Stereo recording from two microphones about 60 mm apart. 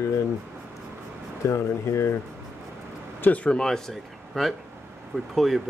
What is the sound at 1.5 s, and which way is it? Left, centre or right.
Speech, left.